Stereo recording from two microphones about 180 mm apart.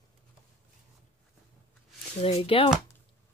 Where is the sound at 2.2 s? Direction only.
30° left (ahead or behind).